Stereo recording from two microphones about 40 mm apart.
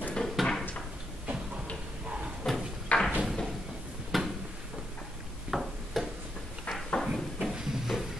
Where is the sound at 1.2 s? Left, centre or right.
Right.